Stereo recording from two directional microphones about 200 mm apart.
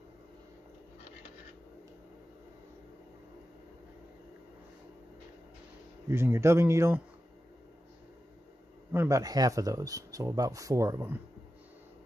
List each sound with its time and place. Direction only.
6.0 s speech: 15° right (ahead or behind)
8.9 s speech: 15° right (ahead or behind)